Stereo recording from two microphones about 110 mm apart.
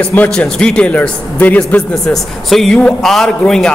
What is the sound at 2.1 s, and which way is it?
A man's voice, centre (ahead or behind).